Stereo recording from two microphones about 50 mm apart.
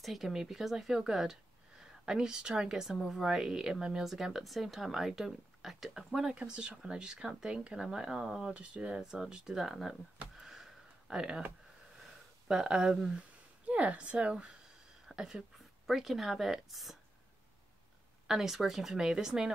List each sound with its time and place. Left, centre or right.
0.0 s a woman's voice: centre
10.3 s a sound: centre
12.4 s a woman's voice: centre
18.2 s a woman's voice: centre